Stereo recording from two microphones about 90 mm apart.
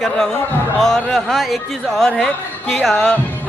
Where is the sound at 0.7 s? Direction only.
5° left (ahead or behind).